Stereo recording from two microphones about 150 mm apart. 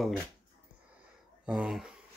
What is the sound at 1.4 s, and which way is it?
Speech, 5° right (ahead or behind).